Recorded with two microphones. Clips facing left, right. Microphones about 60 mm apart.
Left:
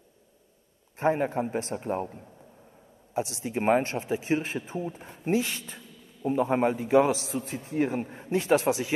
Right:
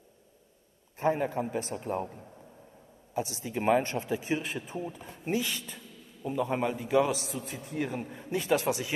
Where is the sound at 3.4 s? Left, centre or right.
Left.